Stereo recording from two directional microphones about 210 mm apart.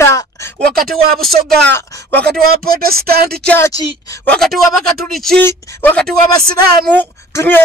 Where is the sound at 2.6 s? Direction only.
45° right (ahead or behind).